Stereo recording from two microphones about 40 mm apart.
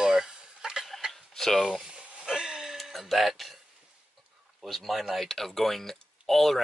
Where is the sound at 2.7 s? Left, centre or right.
Centre.